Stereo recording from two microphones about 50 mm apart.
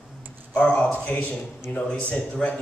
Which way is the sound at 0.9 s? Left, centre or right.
Left.